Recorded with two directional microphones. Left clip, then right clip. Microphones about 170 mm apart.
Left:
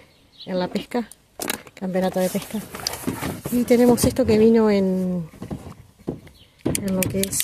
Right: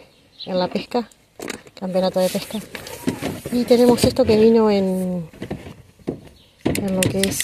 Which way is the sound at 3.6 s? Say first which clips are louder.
Right 3 dB; 20° left (ahead or behind).